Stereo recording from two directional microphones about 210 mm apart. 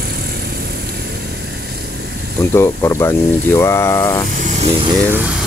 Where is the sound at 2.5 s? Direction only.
10° left (ahead or behind).